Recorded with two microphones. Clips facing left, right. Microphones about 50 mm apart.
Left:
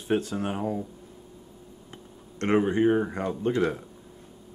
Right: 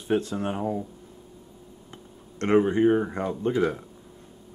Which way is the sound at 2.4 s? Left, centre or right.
Centre.